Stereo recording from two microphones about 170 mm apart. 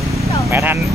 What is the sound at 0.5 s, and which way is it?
Speech, 15° right (ahead or behind).